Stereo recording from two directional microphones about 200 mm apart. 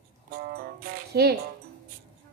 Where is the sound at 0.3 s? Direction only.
50° right (ahead or behind).